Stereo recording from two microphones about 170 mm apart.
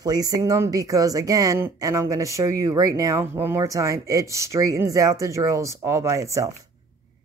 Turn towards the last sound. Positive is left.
turn(degrees=-20)  # may be behind; listen again after turning